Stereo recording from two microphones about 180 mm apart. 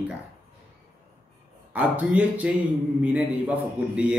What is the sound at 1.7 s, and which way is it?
Speech, 10° right (ahead or behind).